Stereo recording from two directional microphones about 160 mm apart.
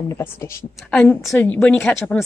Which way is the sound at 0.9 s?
5° left (ahead or behind).